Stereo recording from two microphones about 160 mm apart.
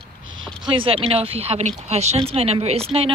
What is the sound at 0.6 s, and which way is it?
Speech, 35° right (ahead or behind).